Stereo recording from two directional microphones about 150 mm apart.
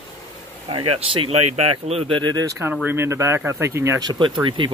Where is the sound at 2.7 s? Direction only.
15° right (ahead or behind); by 4.7 s 35° right (ahead or behind).